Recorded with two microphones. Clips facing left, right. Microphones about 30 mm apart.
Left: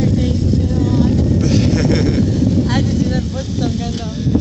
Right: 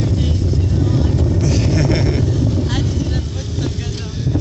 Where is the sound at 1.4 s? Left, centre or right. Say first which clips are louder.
Left 4 dB; centre.